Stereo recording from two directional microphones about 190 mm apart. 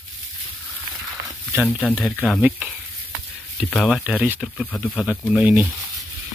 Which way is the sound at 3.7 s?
5° left (ahead or behind).